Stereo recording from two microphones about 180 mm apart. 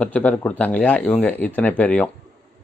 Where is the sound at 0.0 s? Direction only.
5° left (ahead or behind).